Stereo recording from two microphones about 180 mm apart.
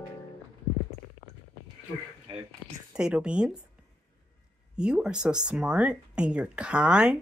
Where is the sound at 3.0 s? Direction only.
5° right (ahead or behind).